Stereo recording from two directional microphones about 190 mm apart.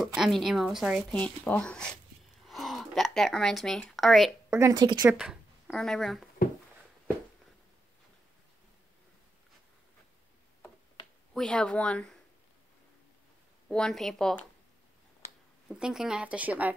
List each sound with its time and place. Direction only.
0.0 s a woman's voice: centre (ahead or behind)
4.5 s speech: 15° right (ahead or behind)
5.0 s speech: 5° right (ahead or behind)
11.3 s a woman's voice: 5° left (ahead or behind)
13.7 s a woman's voice: 5° left (ahead or behind)
15.7 s a woman's voice: 5° right (ahead or behind)